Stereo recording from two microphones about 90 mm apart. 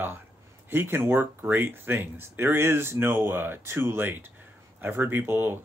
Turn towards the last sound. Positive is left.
turn(degrees=-25)  # may be behind; listen again after turning